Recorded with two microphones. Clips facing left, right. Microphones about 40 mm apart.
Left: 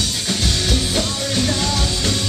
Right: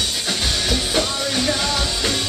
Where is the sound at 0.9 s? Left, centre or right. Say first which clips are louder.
Even; right.